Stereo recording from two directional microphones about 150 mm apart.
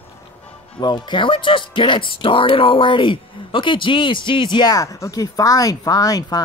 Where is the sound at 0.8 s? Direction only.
30° left (ahead or behind).